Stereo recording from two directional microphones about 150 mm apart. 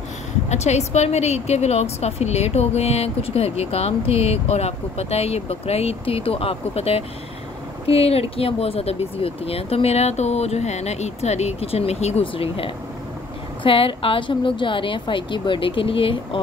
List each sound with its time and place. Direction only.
0.5 s a woman's voice: 50° left (ahead or behind)